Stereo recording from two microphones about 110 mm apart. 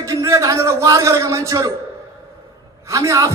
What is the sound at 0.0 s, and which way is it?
A man's voice, 30° right (ahead or behind).